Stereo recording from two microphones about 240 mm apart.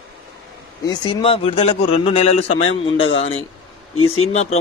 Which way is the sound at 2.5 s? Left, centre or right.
Left.